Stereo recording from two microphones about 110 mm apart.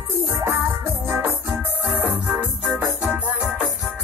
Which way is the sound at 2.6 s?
Centre (ahead or behind).